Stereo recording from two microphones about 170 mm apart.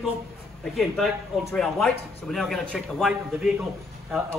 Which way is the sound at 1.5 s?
5° left (ahead or behind).